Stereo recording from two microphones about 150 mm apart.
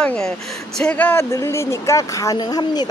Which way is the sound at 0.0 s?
5° left (ahead or behind).